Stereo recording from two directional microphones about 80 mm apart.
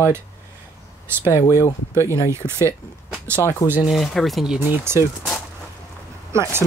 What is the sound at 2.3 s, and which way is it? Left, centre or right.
Speech, right.